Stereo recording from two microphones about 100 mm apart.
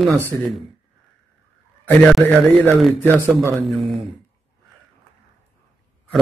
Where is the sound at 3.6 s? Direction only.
Centre (ahead or behind).